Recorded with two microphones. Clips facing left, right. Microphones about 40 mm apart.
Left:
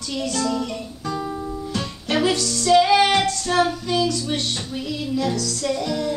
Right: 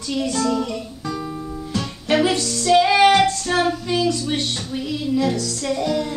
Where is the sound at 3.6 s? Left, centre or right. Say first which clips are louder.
Right 1 dB; centre.